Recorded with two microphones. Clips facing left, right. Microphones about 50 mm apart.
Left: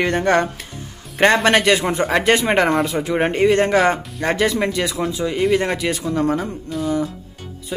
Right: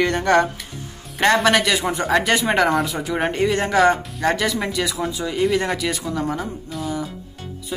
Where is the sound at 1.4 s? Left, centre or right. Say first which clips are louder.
Left 2 dB; left.